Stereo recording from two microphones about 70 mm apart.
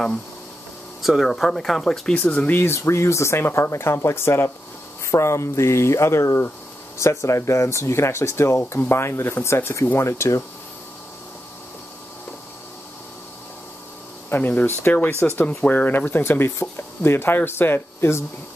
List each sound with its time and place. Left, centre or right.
1.0 s speech: centre
2.1 s speech: left
14.3 s speech: left
15.4 s speech: left